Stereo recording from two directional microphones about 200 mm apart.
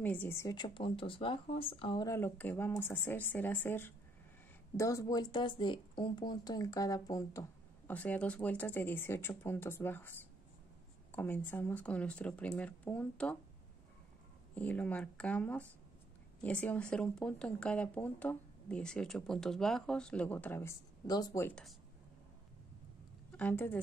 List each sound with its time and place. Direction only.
0.0 s speech: 10° left (ahead or behind)
14.5 s speech: 5° left (ahead or behind)
23.3 s speech: 10° left (ahead or behind)